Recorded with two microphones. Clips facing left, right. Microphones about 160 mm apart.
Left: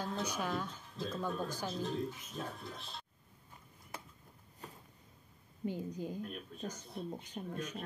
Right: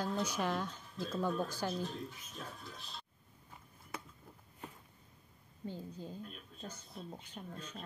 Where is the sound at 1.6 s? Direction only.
Centre (ahead or behind).